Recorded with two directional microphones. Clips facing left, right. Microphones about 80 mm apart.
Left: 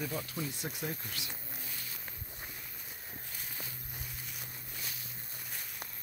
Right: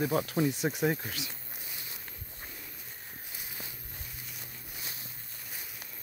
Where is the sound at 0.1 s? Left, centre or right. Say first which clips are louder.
Right 10 dB; right.